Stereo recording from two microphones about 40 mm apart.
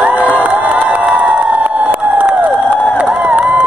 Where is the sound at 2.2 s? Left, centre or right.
Right.